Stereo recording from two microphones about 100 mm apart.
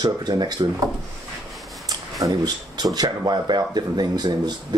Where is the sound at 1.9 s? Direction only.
40° right (ahead or behind).